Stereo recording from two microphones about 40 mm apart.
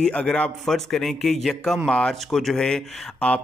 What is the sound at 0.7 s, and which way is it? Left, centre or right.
Speech, centre.